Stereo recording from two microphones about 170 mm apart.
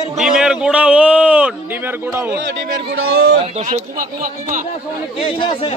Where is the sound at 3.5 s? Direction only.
40° right (ahead or behind).